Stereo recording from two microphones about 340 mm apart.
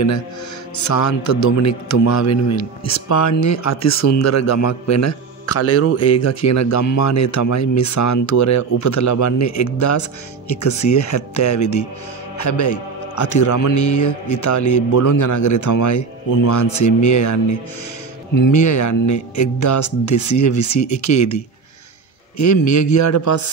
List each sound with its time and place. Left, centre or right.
0.7 s a man's voice: left
22.4 s a man's voice: left